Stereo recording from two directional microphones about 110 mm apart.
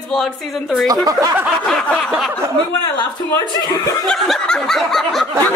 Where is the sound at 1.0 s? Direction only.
35° right (ahead or behind).